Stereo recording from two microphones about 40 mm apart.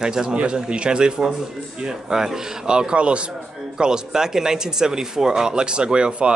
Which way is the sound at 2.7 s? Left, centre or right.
Right.